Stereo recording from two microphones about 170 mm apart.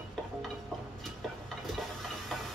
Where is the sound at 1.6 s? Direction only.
Centre (ahead or behind).